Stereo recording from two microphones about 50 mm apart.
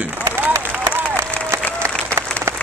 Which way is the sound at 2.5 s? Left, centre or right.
Right.